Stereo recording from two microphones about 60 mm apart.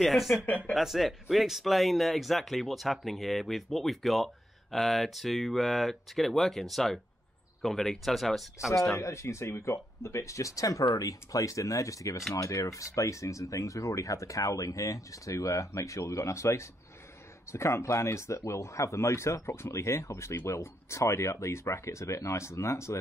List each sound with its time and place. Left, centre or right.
0.0 s speech: centre
8.9 s speech: left